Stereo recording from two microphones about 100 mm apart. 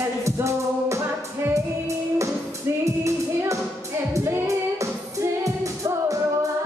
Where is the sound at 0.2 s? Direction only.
30° right (ahead or behind).